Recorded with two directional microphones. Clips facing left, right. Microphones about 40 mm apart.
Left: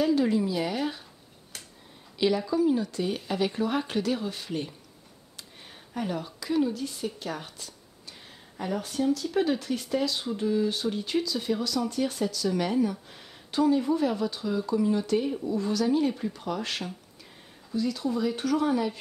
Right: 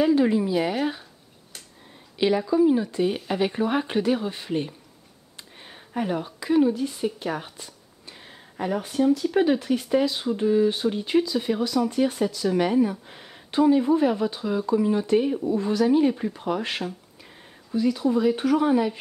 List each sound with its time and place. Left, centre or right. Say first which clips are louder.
0.0 s speech: right 4 dB; right
2.1 s speech: right 4 dB; right